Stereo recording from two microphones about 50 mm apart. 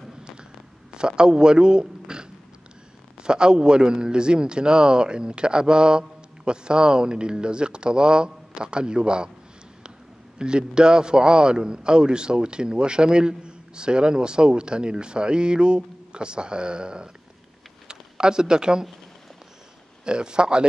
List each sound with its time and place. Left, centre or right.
0.9 s a man's voice: centre
10.4 s a man's voice: centre
20.1 s a man's voice: centre